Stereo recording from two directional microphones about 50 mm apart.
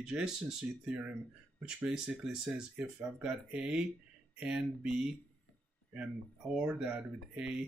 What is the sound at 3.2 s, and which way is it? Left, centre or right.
Speech, centre.